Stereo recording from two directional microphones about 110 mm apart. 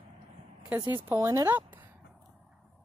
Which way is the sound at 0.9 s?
20° right (ahead or behind).